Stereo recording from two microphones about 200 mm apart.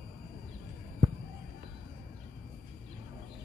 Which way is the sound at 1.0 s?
50° right (ahead or behind).